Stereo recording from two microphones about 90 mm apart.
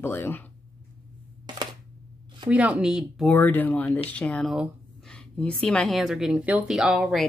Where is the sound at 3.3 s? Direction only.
20° left (ahead or behind); by 7.2 s 10° right (ahead or behind).